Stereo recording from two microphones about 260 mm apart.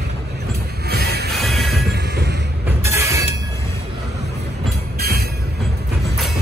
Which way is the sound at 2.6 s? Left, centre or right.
Centre.